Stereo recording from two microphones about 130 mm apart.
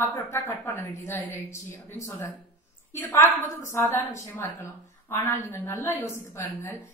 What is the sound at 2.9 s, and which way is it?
A woman's voice, 20° left (ahead or behind).